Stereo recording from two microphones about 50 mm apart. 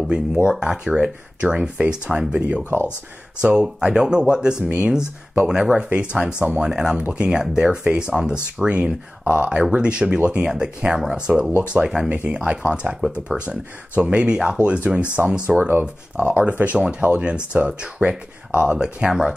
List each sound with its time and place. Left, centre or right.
0.1 s speech: centre
4.6 s speech: right
13.3 s speech: centre
14.0 s speech: centre